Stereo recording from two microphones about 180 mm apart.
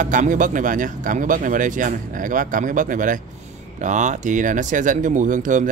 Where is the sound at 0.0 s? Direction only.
45° right (ahead or behind).